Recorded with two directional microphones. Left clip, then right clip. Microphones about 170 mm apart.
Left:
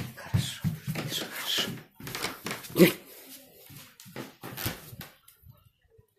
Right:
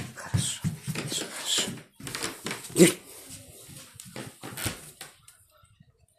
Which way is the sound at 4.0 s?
60° right (ahead or behind).